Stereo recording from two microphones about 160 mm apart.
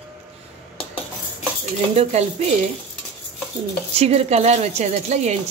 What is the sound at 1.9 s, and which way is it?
Speech, 40° right (ahead or behind).